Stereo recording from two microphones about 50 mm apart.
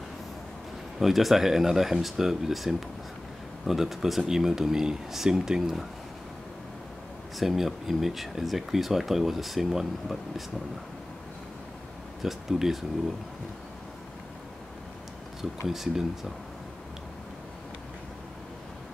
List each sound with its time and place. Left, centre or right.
0.9 s speech: centre
7.3 s speech: centre
12.2 s speech: centre
15.6 s speech: centre